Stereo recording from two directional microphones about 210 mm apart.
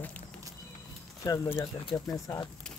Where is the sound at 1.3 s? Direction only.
10° left (ahead or behind).